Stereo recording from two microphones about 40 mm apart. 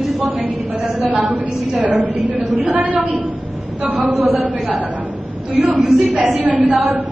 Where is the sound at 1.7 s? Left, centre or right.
Right.